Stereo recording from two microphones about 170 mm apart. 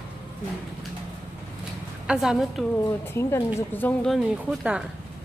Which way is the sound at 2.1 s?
Centre (ahead or behind).